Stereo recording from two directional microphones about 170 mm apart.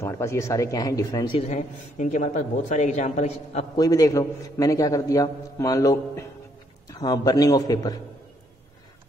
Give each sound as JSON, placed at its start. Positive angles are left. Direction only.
{"t": 0.0, "sound": "a man's voice", "side_deg": 15}
{"t": 1.5, "sound": "speech", "side_deg": 45}
{"t": 3.7, "sound": "a man's voice", "side_deg": 20}